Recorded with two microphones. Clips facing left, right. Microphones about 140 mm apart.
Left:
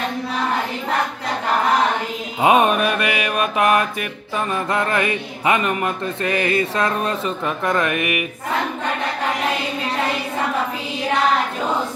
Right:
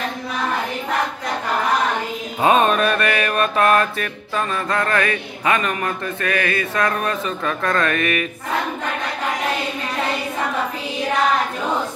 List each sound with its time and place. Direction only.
2.4 s mantra: 15° left (ahead or behind)
4.7 s speech: 20° left (ahead or behind)